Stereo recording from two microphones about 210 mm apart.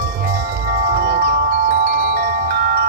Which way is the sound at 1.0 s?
45° right (ahead or behind).